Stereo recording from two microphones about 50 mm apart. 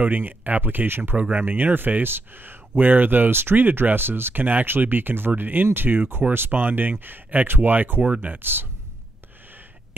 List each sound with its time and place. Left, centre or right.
0.0 s speech: right
8.0 s speech: right
8.4 s speech: right